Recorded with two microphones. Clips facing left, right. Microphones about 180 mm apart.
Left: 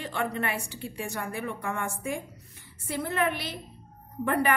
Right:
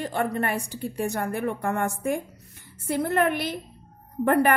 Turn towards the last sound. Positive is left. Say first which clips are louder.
# right 5 dB
turn(degrees=-50)  # may be behind; listen again after turning